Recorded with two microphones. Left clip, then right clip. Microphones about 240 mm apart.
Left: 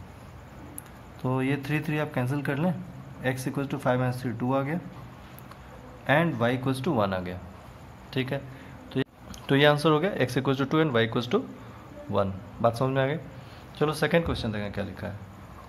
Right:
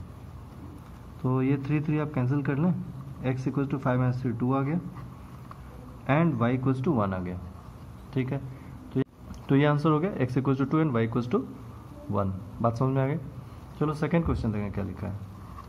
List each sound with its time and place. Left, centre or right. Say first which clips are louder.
1.2 s speech: even; left
6.0 s speech: left 2 dB; left